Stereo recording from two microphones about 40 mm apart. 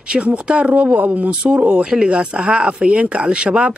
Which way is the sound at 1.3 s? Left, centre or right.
Right.